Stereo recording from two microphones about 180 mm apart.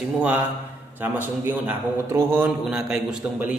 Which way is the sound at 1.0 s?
10° right (ahead or behind).